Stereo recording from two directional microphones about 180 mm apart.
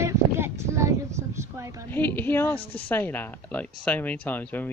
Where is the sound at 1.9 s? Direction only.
10° left (ahead or behind).